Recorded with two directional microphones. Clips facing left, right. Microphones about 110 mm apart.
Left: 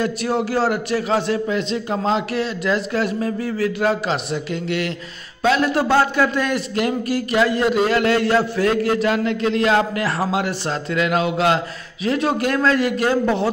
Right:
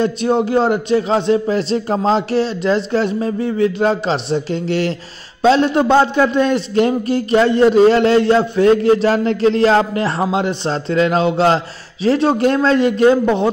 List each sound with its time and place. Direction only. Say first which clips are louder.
0.0 s a man's voice: right 5 dB; 25° right (ahead or behind)